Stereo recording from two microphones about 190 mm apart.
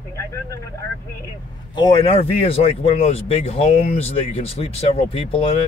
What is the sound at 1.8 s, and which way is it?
Speech, 25° left (ahead or behind).